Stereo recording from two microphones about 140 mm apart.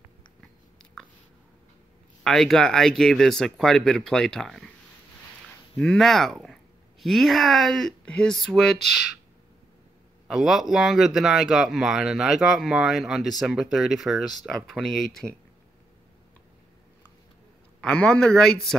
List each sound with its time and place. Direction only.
2.2 s speech: centre (ahead or behind)
5.8 s speech: centre (ahead or behind)
10.2 s speech: 5° right (ahead or behind)
17.7 s speech: 5° left (ahead or behind)